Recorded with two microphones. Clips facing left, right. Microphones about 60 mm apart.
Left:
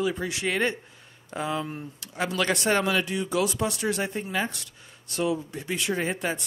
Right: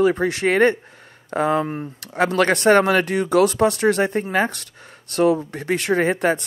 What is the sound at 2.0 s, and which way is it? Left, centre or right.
Speech, right.